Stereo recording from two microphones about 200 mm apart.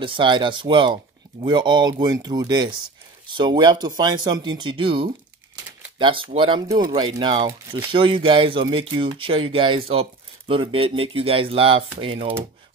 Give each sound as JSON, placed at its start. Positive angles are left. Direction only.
{"t": 0.0, "sound": "speech", "side_deg": -25}